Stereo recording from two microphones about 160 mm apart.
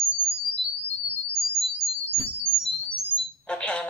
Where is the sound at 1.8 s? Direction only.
Centre (ahead or behind).